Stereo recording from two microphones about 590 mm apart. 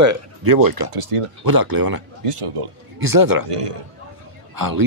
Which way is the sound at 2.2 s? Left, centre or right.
Right.